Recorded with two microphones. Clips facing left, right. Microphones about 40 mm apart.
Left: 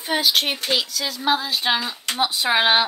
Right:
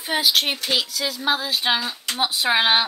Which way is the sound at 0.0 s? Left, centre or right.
Centre.